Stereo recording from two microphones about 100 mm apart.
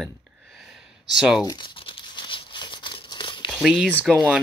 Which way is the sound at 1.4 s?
50° left (ahead or behind).